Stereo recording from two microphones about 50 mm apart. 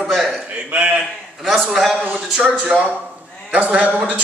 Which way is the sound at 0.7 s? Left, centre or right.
Right.